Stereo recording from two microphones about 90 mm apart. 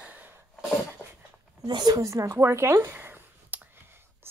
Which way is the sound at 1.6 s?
55° right (ahead or behind).